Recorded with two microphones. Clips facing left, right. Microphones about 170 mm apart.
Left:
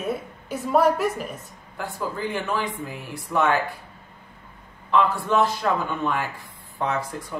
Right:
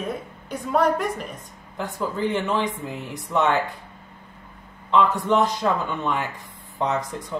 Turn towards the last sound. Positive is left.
turn(degrees=-20)  # may be behind; listen again after turning